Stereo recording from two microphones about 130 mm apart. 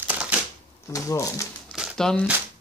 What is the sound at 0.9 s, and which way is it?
Speech, 25° left (ahead or behind).